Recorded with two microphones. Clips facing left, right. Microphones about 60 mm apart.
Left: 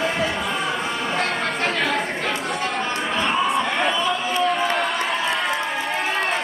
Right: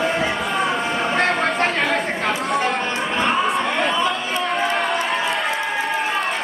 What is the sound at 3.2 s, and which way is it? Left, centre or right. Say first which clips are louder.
Crowd: right 1 dB; centre.